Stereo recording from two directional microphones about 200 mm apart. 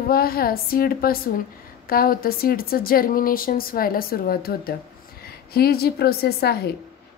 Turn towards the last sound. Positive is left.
turn(degrees=50)  # may be behind; listen again after turning